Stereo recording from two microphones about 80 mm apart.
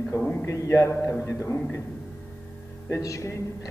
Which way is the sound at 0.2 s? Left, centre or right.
Left.